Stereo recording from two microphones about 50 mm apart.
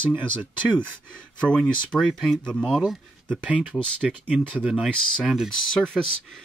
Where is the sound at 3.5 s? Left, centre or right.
Left.